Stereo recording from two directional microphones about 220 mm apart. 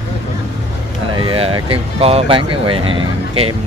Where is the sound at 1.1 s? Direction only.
25° right (ahead or behind).